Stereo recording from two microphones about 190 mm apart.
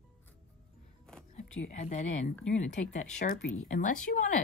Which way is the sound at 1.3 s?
40° left (ahead or behind).